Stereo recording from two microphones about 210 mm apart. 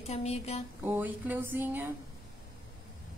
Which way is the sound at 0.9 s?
10° right (ahead or behind).